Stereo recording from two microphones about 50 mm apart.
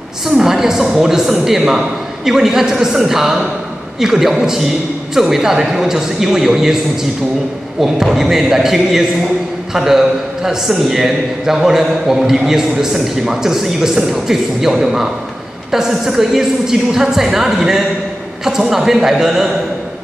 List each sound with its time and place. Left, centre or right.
0.4 s a man's voice: centre
7.8 s a man's voice: centre